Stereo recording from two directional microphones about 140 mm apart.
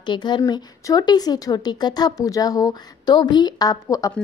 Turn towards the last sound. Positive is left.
turn(degrees=25)  # may be behind; listen again after turning